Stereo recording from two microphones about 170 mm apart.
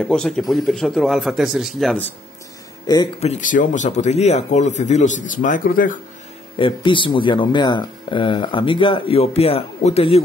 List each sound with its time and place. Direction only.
0.0 s a man's voice: 5° left (ahead or behind)
3.2 s speech: 45° left (ahead or behind)
6.6 s speech: 30° left (ahead or behind)